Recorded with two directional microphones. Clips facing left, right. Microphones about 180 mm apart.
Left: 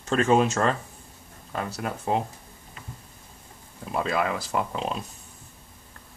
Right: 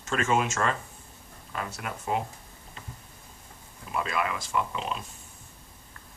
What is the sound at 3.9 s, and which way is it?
Speech, 30° left (ahead or behind).